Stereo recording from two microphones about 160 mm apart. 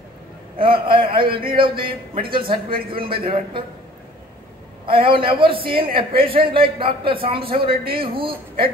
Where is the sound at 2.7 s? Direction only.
65° right (ahead or behind).